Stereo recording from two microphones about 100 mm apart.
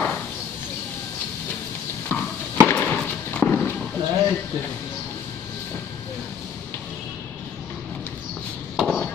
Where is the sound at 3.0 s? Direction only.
15° left (ahead or behind).